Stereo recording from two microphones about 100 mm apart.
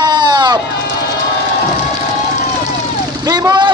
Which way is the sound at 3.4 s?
50° right (ahead or behind).